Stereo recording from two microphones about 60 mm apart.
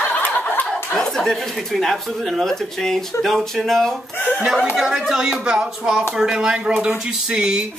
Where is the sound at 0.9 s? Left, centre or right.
Centre.